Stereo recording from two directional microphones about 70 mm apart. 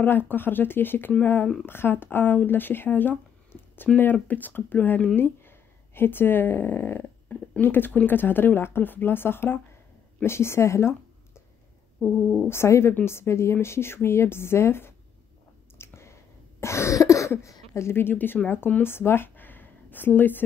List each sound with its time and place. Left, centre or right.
0.0 s a woman's voice: left
12.4 s a woman's voice: left
15.8 s cough: left
18.8 s a sound: left